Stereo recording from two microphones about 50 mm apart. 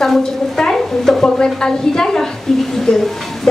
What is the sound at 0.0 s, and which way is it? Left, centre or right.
A woman's voice, centre.